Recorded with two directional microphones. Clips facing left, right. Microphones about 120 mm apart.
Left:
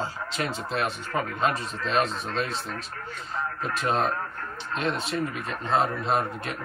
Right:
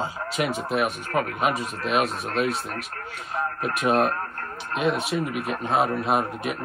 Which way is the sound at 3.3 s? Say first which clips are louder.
Right 3 dB; 15° right (ahead or behind).